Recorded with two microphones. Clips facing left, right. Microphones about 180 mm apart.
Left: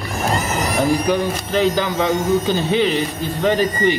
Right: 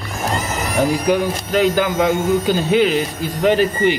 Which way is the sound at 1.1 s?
10° right (ahead or behind).